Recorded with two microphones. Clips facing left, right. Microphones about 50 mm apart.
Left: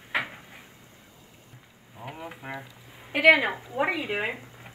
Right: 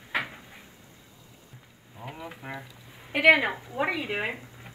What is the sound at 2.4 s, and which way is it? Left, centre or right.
Speech, left.